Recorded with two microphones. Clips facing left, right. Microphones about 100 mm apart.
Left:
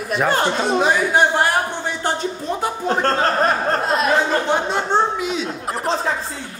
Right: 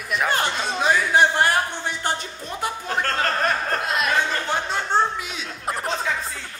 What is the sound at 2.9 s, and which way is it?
Speech, 30° left (ahead or behind).